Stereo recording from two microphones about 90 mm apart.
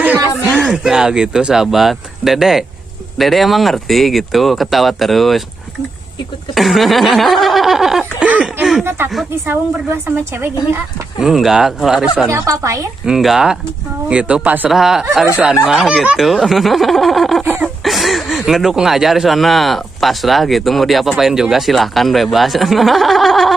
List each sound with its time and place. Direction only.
0.5 s speech: centre (ahead or behind)
6.5 s speech: centre (ahead or behind)
8.2 s speech: 15° right (ahead or behind)
8.8 s a woman's voice: 25° right (ahead or behind)
11.1 s speech: 5° right (ahead or behind)
12.3 s speech: 35° right (ahead or behind)
13.0 s speech: 5° right (ahead or behind)
14.7 s speech: 5° right (ahead or behind)
17.4 s a woman's voice: 20° right (ahead or behind)
17.8 s speech: centre (ahead or behind)